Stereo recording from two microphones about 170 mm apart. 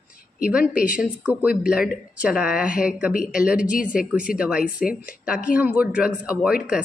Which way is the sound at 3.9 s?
5° right (ahead or behind).